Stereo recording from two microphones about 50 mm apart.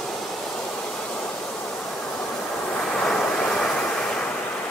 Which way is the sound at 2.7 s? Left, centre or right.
Centre.